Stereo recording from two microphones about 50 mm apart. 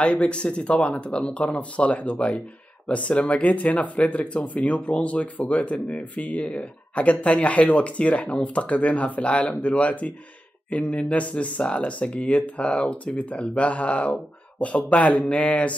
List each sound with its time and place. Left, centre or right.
0.0 s speech: left